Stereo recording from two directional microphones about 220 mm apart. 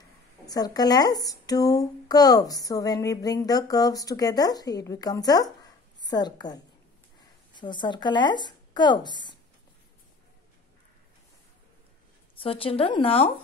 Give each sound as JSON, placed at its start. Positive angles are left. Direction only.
{"t": 0.5, "sound": "speech", "side_deg": 15}
{"t": 12.4, "sound": "speech", "side_deg": 25}